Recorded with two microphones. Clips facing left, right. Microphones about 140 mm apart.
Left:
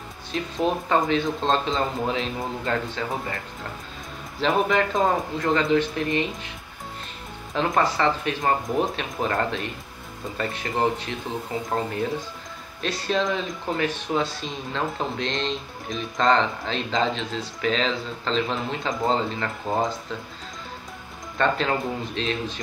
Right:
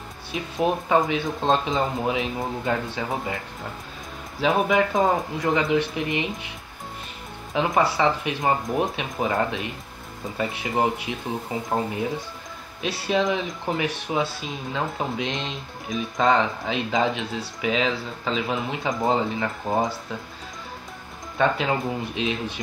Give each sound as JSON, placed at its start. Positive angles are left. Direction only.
{"t": 0.3, "sound": "speech", "side_deg": -10}
{"t": 4.4, "sound": "speech", "side_deg": -5}
{"t": 4.9, "sound": "speech", "side_deg": -15}
{"t": 7.5, "sound": "speech", "side_deg": -10}
{"t": 18.9, "sound": "speech", "side_deg": -20}
{"t": 19.7, "sound": "speech", "side_deg": 0}
{"t": 21.4, "sound": "speech", "side_deg": -10}